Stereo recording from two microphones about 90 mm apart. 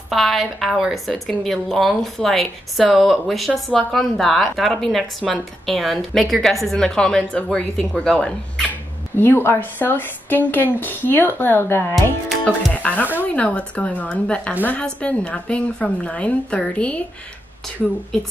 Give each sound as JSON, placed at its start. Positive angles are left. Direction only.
{"t": 0.1, "sound": "a woman's voice", "side_deg": 0}
{"t": 8.6, "sound": "a woman's voice", "side_deg": 20}